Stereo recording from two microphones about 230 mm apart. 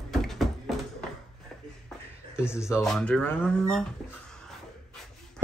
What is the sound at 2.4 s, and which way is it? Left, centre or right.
Speech, centre.